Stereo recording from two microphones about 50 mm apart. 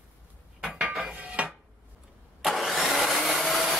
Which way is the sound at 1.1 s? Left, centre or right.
Right.